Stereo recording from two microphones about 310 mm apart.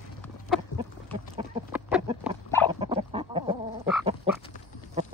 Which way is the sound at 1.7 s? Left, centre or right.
Centre.